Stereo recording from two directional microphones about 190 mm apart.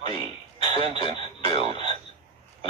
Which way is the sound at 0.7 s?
35° right (ahead or behind).